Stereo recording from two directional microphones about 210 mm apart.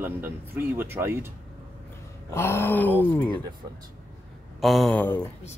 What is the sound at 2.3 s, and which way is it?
Speech, 10° left (ahead or behind).